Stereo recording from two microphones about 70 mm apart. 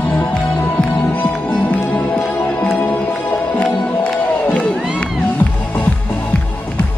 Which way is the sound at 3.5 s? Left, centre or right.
Centre.